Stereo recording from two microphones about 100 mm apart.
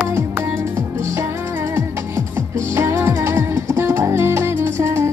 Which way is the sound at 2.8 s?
25° right (ahead or behind).